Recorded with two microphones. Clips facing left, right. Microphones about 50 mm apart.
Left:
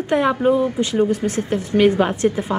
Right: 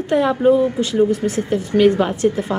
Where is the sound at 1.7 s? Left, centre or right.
Centre.